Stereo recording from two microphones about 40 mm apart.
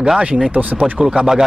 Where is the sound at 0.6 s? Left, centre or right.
Right.